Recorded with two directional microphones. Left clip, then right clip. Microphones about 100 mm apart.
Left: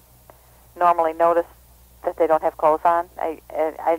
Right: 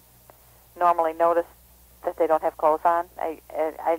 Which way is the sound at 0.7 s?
25° left (ahead or behind).